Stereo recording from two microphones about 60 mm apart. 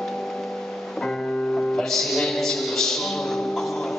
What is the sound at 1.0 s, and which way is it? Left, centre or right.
Music, centre.